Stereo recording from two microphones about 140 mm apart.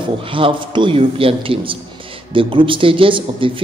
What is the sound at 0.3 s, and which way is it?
Speech, 35° right (ahead or behind).